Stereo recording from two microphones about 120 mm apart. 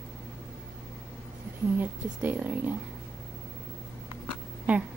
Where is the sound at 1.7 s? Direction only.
15° right (ahead or behind).